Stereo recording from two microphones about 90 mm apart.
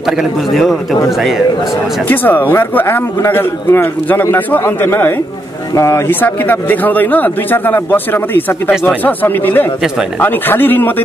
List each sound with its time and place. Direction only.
0.2 s a man's voice: centre (ahead or behind)
2.0 s a man's voice: 20° left (ahead or behind)
6.2 s a man's voice: 20° left (ahead or behind)